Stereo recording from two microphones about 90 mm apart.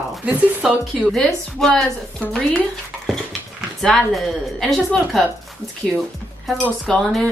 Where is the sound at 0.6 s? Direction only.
5° right (ahead or behind).